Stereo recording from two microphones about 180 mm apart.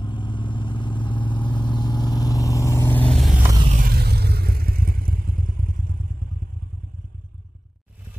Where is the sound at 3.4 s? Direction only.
20° right (ahead or behind).